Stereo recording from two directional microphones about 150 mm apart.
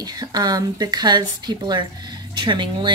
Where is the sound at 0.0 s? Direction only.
25° right (ahead or behind).